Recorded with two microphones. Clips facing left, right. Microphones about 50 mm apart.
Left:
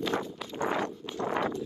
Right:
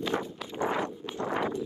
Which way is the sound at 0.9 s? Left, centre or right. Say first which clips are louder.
Even; right.